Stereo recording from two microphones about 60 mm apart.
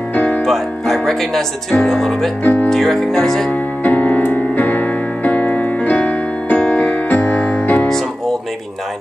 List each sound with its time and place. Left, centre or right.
0.1 s music: left
0.5 s speech: centre
2.4 s speech: left
2.7 s speech: centre
3.8 s keyboard: left
7.6 s music: left